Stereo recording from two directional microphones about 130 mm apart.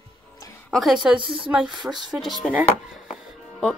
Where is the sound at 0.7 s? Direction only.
Centre (ahead or behind).